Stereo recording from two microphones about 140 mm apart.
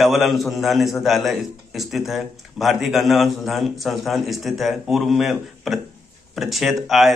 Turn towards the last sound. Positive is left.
turn(degrees=0)  # may be behind; listen again after turning